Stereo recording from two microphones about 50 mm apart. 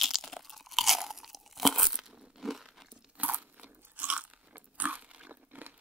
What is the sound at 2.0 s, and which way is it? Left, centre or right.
Crunch, centre.